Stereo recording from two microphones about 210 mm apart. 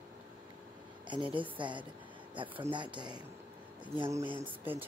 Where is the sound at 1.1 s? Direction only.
25° right (ahead or behind).